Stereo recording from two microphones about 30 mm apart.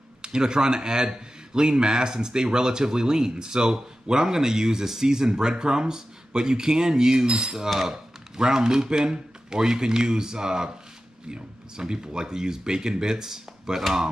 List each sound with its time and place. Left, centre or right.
0.2 s speech: right